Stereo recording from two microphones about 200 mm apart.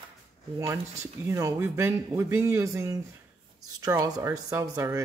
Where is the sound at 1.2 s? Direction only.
15° right (ahead or behind).